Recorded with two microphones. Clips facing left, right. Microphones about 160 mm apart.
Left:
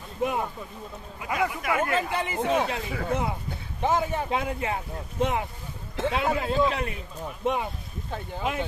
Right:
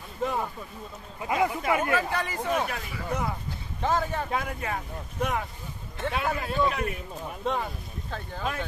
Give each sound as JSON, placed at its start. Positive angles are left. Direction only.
{"t": 0.2, "sound": "boat", "side_deg": 15}
{"t": 1.2, "sound": "speech", "side_deg": -25}
{"t": 1.8, "sound": "speech", "side_deg": 20}